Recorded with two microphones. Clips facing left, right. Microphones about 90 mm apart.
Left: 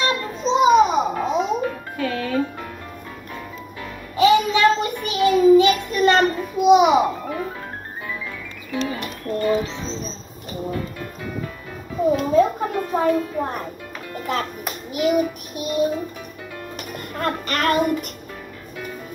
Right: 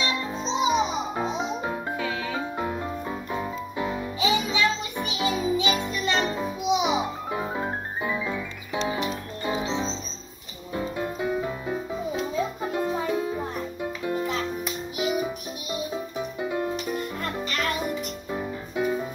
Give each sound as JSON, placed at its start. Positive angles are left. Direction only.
{"t": 0.0, "sound": "music", "side_deg": 55}
{"t": 4.2, "sound": "music", "side_deg": 55}
{"t": 7.2, "sound": "music", "side_deg": -20}
{"t": 12.0, "sound": "music", "side_deg": 55}
{"t": 13.1, "sound": "music", "side_deg": -20}
{"t": 13.4, "sound": "music", "side_deg": 60}
{"t": 16.2, "sound": "music", "side_deg": -20}
{"t": 16.7, "sound": "music", "side_deg": 55}
{"t": 18.3, "sound": "music", "side_deg": -20}